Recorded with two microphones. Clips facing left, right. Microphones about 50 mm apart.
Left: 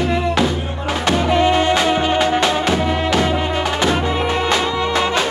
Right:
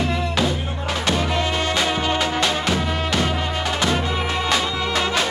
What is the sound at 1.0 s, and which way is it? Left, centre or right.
Music, left.